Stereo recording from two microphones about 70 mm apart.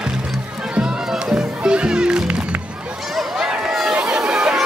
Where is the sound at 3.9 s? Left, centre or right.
Centre.